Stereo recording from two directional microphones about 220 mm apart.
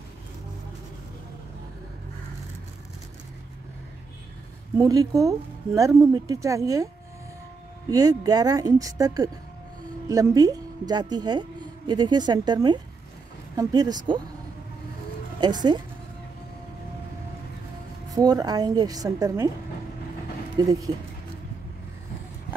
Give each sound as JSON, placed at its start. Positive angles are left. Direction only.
{"t": 4.7, "sound": "speech", "side_deg": -15}
{"t": 7.9, "sound": "a woman's voice", "side_deg": -15}
{"t": 15.4, "sound": "a woman's voice", "side_deg": -20}
{"t": 18.1, "sound": "speech", "side_deg": -15}
{"t": 20.6, "sound": "speech", "side_deg": -20}